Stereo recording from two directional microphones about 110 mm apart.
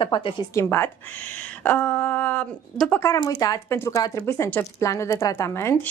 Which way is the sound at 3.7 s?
20° left (ahead or behind).